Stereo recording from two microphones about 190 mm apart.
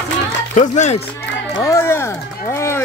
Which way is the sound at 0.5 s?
40° left (ahead or behind).